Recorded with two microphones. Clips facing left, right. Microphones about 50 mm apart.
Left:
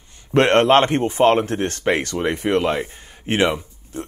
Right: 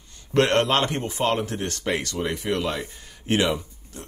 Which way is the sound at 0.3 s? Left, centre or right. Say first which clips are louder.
Left 6 dB; left.